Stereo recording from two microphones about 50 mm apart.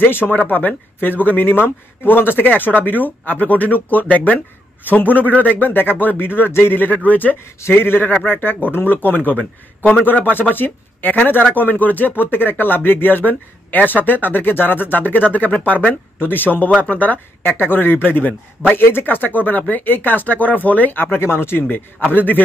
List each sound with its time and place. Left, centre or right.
0.0 s a man's voice: left
0.3 s speech: left
7.7 s a man's voice: left